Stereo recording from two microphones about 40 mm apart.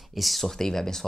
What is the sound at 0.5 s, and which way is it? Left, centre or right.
Speech, centre.